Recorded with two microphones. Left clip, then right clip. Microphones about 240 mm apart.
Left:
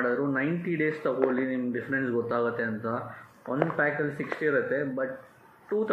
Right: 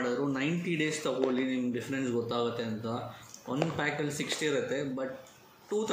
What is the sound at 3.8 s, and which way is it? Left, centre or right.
Speech, right.